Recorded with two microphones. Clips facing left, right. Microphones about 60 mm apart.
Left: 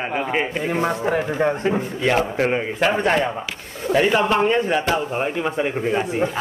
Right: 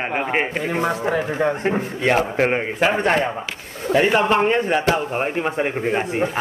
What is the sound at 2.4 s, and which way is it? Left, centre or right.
A man's voice, right.